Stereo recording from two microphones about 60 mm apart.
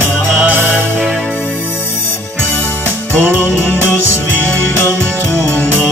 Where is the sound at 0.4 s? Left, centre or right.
Right.